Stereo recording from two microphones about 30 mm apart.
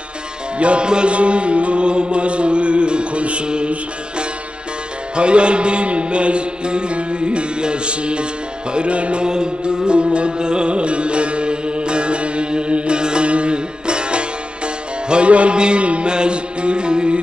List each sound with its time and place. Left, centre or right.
0.6 s music: right
5.1 s music: right
9.2 s music: right